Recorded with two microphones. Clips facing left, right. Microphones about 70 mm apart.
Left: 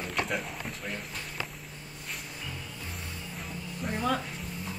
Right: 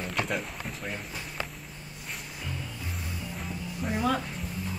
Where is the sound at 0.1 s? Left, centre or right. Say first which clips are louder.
Even; centre.